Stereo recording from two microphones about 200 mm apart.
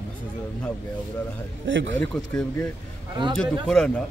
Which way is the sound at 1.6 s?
70° right (ahead or behind).